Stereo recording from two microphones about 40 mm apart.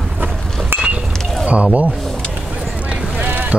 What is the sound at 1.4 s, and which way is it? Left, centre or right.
Speech, right.